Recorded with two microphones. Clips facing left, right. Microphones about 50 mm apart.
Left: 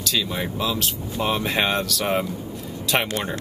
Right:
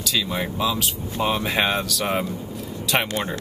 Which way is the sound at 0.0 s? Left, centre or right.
Centre.